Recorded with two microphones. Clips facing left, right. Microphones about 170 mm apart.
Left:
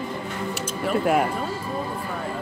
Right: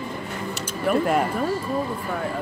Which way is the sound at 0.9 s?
60° right (ahead or behind).